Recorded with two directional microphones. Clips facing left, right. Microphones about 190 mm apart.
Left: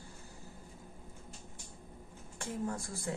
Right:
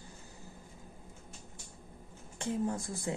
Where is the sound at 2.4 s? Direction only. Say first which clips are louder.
Right 4 dB; 20° right (ahead or behind).